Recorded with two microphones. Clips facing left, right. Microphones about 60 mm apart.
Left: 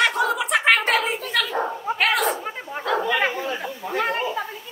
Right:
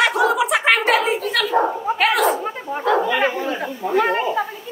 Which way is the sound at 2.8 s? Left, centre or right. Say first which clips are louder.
Right 4 dB; centre.